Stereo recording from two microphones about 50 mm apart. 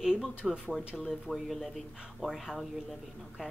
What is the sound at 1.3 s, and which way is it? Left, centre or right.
Speech, centre.